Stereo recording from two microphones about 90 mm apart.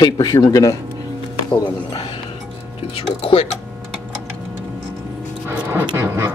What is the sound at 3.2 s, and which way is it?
Speech, 90° left.